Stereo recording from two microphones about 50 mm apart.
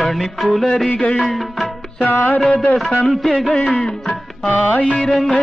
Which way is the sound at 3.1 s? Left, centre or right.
Centre.